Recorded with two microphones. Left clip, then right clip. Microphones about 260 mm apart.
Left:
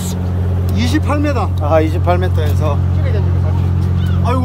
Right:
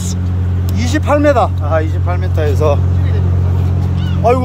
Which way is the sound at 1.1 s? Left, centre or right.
Centre.